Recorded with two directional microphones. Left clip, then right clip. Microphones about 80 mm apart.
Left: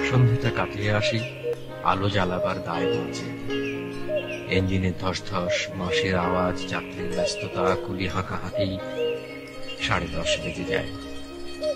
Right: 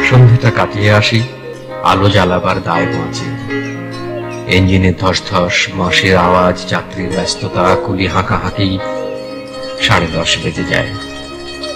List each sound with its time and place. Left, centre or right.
0.0 s speech: left
4.5 s speech: left
9.8 s speech: left